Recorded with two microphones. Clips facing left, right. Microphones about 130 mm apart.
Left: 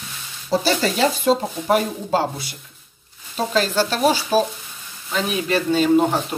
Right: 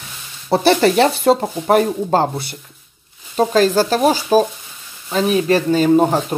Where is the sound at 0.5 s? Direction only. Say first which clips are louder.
Right 7 dB; 60° right (ahead or behind).